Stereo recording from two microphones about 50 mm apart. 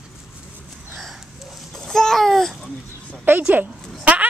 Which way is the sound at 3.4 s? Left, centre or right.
Right.